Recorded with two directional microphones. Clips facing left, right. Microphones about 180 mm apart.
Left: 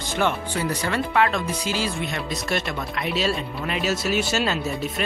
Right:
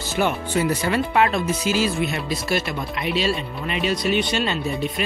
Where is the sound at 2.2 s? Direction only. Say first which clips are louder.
Right 2 dB; 5° right (ahead or behind).